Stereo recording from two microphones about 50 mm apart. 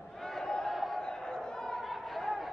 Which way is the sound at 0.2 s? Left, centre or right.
Centre.